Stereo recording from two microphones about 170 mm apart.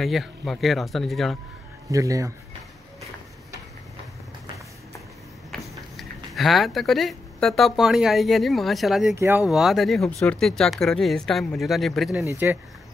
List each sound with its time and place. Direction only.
0.0 s speech: centre (ahead or behind)
1.9 s speech: 20° right (ahead or behind)
5.9 s speech: centre (ahead or behind)
9.1 s speech: 15° right (ahead or behind)
9.5 s speech: centre (ahead or behind)
12.3 s speech: 15° right (ahead or behind)